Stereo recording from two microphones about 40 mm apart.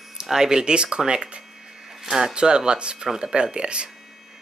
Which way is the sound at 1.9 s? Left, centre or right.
Centre.